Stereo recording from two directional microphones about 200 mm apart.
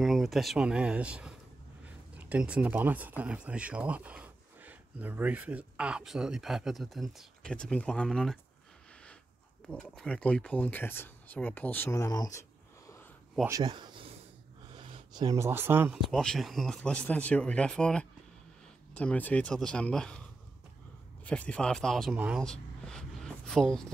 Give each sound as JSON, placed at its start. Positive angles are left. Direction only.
{"t": 0.0, "sound": "speech", "side_deg": 0}
{"t": 9.7, "sound": "speech", "side_deg": 5}
{"t": 13.5, "sound": "speech", "side_deg": -20}
{"t": 16.0, "sound": "speech", "side_deg": 5}
{"t": 21.3, "sound": "speech", "side_deg": 5}
{"t": 22.4, "sound": "a sound", "side_deg": 5}